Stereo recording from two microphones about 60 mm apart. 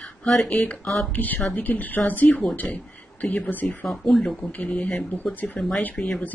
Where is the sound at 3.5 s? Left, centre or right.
Left.